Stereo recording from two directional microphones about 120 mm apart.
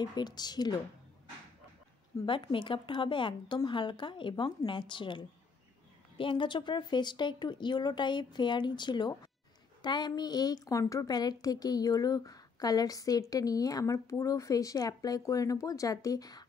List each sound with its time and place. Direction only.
0.0 s a woman's voice: 35° left (ahead or behind)
2.2 s a woman's voice: 45° left (ahead or behind)